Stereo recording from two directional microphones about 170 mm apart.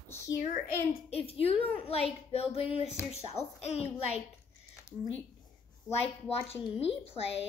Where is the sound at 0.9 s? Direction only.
35° left (ahead or behind).